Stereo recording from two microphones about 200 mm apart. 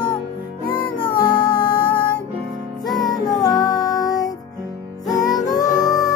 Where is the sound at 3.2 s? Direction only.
20° left (ahead or behind).